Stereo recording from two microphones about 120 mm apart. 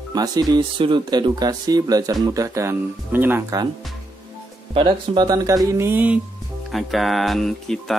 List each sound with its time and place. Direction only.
0.1 s speech: 35° right (ahead or behind); by 3.5 s 15° right (ahead or behind)
4.7 s speech: 40° right (ahead or behind); by 6.2 s 15° right (ahead or behind)
6.7 s speech: centre (ahead or behind)